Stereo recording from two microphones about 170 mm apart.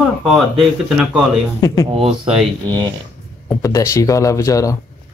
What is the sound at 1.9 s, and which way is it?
Speech, 35° right (ahead or behind).